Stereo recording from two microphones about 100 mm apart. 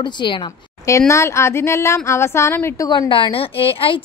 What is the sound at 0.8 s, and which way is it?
Speech, 30° left (ahead or behind).